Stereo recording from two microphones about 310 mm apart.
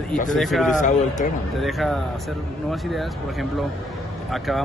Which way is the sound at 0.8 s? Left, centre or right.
Left.